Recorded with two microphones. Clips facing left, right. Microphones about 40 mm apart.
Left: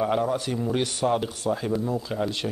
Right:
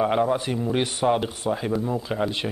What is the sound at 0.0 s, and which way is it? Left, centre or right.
Speech, right.